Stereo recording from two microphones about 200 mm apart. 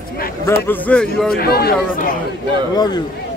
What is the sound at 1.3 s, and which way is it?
Speech, 50° left (ahead or behind).